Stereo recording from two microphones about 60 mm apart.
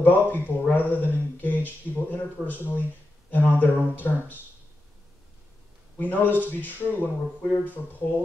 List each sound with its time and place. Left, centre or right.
0.0 s a sound: left
3.3 s speech: left
5.9 s speech: left